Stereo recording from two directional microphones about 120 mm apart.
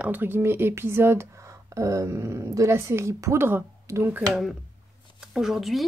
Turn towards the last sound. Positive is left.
turn(degrees=0)  # may be behind; listen again after turning